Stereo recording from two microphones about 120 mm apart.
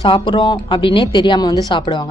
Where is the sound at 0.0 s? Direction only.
45° left (ahead or behind).